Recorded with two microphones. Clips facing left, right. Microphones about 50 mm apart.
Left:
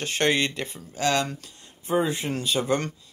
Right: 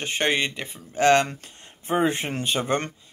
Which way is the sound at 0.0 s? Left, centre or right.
Right.